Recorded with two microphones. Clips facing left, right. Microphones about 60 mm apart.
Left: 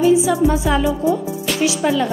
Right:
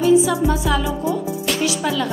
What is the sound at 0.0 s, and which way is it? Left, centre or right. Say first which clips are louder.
Speech: left 1 dB; centre.